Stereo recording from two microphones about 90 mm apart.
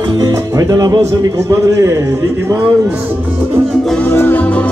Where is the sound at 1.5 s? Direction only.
35° right (ahead or behind).